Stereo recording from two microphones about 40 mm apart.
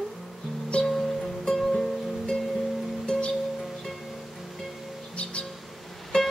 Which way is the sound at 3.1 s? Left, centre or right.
Left.